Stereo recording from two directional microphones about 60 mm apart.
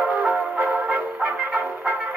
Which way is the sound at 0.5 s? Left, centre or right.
Right.